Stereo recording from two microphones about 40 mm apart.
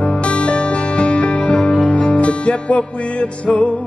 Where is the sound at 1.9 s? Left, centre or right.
Left.